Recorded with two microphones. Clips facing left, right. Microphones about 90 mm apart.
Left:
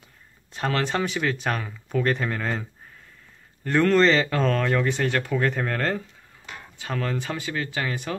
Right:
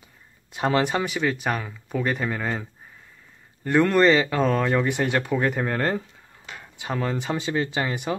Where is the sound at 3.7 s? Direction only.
10° right (ahead or behind).